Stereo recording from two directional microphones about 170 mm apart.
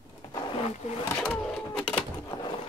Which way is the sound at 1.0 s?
5° left (ahead or behind).